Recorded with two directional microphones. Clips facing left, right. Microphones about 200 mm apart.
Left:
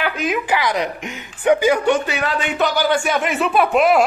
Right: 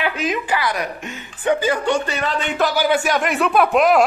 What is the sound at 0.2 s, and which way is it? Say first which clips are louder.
Speech: left 1 dB; 5° left (ahead or behind).